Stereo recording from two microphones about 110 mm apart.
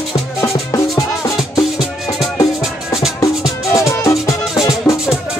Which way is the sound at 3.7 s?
30° left (ahead or behind).